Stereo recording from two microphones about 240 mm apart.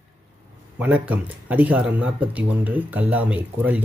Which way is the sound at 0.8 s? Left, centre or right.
Centre.